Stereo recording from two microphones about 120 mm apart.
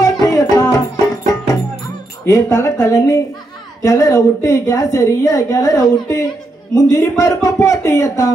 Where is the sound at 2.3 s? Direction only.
25° left (ahead or behind).